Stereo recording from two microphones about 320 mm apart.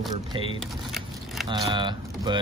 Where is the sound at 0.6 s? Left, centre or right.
Centre.